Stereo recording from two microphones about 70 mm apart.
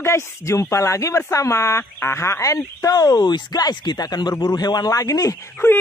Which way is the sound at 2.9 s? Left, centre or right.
Left.